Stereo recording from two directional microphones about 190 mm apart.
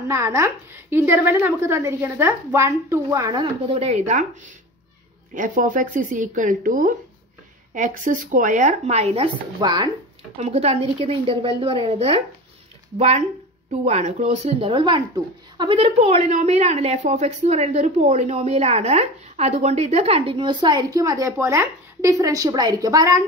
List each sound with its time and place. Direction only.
0.1 s a woman's voice: 15° right (ahead or behind)
3.6 s a woman's voice: 35° right (ahead or behind)
5.3 s a woman's voice: 45° right (ahead or behind); by 9.8 s 25° right (ahead or behind)
10.3 s a woman's voice: 35° right (ahead or behind); by 23.2 s 20° right (ahead or behind)